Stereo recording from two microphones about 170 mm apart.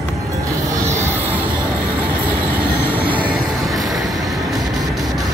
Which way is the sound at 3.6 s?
Centre (ahead or behind).